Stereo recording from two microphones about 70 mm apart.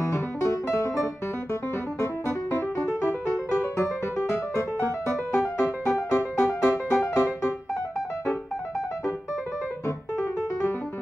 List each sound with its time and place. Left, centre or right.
0.0 s music: left
9.8 s music: left